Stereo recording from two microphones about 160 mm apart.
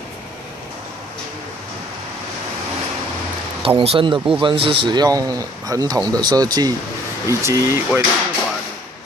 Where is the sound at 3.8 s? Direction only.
35° right (ahead or behind); by 7.8 s 20° right (ahead or behind).